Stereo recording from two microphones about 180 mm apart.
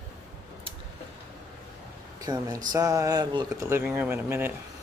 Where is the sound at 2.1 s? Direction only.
20° right (ahead or behind).